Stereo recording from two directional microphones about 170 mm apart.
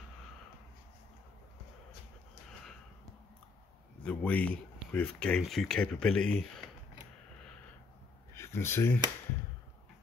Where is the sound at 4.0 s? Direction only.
10° left (ahead or behind).